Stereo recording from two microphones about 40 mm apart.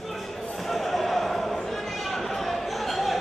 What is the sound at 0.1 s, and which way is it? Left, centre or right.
Basketball bounce, centre.